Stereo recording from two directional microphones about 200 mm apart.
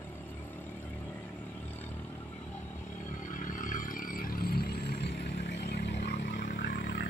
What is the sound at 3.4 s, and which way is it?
Vehicle, 40° left (ahead or behind).